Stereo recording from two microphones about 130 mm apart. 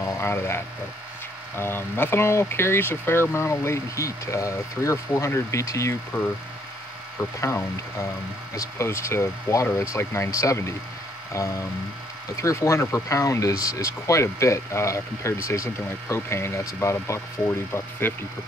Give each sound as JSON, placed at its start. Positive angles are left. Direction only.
{"t": 0.0, "sound": "speech", "side_deg": 20}
{"t": 7.3, "sound": "speech", "side_deg": 25}
{"t": 12.4, "sound": "speech", "side_deg": 25}